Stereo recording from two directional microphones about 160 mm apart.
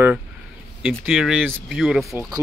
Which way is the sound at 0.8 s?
5° right (ahead or behind).